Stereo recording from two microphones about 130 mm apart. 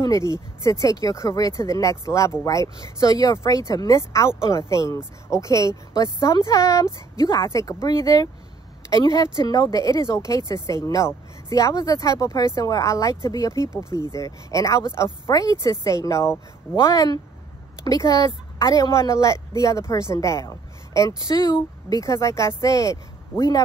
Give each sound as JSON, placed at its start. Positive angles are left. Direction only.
{"t": 0.0, "sound": "speech", "side_deg": 25}